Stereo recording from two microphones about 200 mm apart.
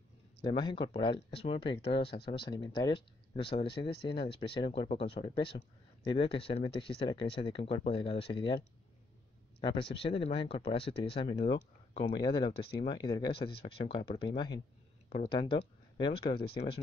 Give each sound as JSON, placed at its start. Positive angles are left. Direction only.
{"t": 0.4, "sound": "speech", "side_deg": 25}
{"t": 9.6, "sound": "speech", "side_deg": 25}